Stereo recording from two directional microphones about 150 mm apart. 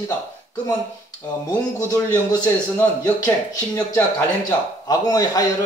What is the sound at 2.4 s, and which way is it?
Speech, 15° left (ahead or behind).